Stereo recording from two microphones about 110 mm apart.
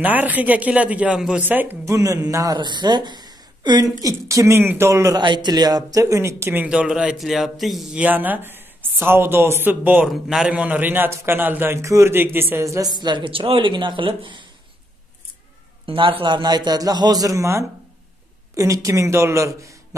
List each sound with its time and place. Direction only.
0.0 s speech: 15° right (ahead or behind)
1.9 s a man's voice: 30° right (ahead or behind)
4.0 s a man's voice: 30° right (ahead or behind)
5.2 s speech: 45° right (ahead or behind); by 8.0 s centre (ahead or behind)
8.0 s a man's voice: 15° right (ahead or behind)
10.0 s a man's voice: centre (ahead or behind)
10.5 s a man's voice: 15° right (ahead or behind)
12.9 s speech: 45° right (ahead or behind)
15.8 s a man's voice: 55° right (ahead or behind); by 20.0 s 30° right (ahead or behind)